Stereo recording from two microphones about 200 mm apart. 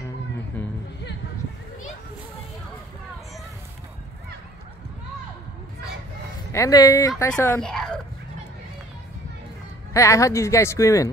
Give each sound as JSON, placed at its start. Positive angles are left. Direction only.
{"t": 6.5, "sound": "speech", "side_deg": 15}
{"t": 9.9, "sound": "speech", "side_deg": 15}